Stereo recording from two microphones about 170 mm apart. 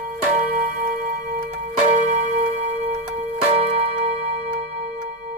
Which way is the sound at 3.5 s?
35° right (ahead or behind).